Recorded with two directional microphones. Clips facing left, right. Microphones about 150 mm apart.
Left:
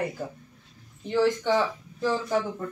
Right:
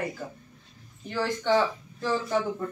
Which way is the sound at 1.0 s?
20° left (ahead or behind).